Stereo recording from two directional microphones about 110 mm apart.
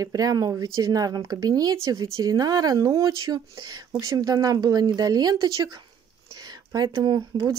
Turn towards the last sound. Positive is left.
turn(degrees=-40)  # may be behind; listen again after turning